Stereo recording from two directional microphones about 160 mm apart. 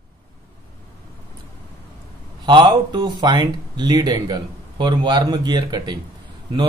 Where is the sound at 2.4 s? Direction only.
30° right (ahead or behind).